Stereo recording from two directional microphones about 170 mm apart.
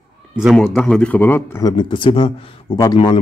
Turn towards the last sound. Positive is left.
turn(degrees=30)  # may be behind; listen again after turning